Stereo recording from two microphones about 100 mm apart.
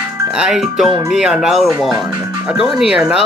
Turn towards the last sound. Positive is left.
turn(degrees=-10)  # may be behind; listen again after turning